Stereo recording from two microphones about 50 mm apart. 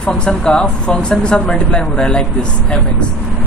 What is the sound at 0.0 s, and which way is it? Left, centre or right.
Speech, centre.